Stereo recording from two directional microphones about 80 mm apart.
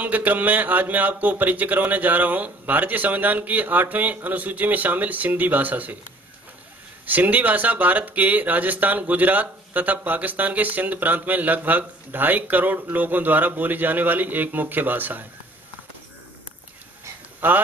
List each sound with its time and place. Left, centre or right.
0.0 s speech: right
7.1 s speech: right
17.4 s speech: right